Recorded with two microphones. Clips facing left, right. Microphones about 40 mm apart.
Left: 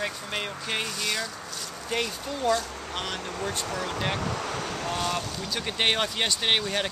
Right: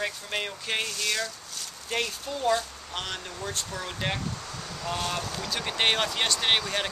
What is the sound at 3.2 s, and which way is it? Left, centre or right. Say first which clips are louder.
Speech: left 5 dB; left.